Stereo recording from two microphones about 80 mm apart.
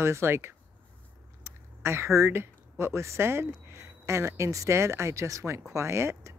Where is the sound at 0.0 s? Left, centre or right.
Right.